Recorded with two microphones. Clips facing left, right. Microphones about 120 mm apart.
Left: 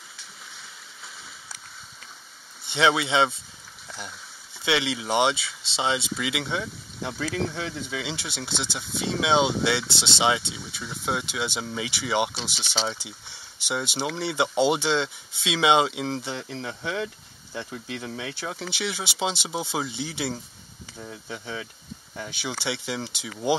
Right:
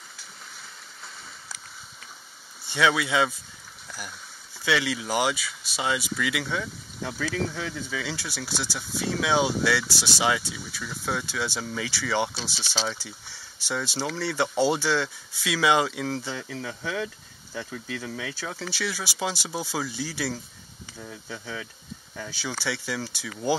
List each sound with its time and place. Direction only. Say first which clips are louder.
2.7 s speech: left 1 dB; 25° left (ahead or behind)
4.6 s speech: left 1 dB; 20° left (ahead or behind)